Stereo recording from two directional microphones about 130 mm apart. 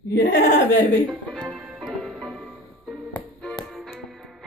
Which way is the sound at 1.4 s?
10° right (ahead or behind).